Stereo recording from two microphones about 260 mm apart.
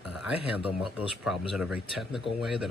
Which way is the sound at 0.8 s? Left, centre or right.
Centre.